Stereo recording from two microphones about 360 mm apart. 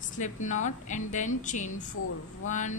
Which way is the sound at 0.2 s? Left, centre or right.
Left.